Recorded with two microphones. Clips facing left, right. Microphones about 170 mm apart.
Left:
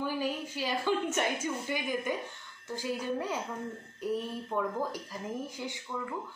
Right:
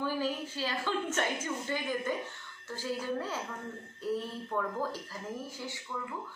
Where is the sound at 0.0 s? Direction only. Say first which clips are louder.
Even; 15° left (ahead or behind).